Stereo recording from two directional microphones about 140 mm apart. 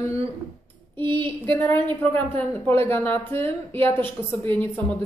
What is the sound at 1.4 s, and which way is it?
A woman's voice, 15° left (ahead or behind).